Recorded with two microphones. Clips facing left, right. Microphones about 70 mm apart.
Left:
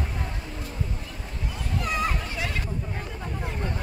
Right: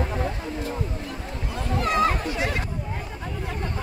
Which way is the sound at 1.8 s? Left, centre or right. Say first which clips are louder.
Right 6 dB; right.